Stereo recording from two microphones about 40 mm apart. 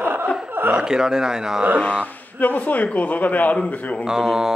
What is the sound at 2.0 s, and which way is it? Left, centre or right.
Speech, left.